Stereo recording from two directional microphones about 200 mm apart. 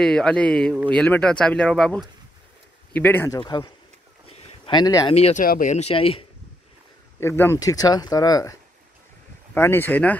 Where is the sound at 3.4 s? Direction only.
25° left (ahead or behind).